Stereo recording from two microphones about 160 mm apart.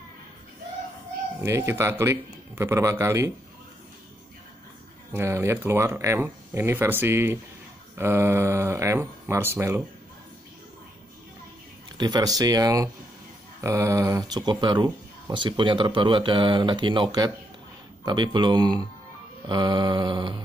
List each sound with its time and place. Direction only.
1.4 s speech: 15° right (ahead or behind)
5.1 s speech: 15° right (ahead or behind)
12.0 s speech: 25° right (ahead or behind)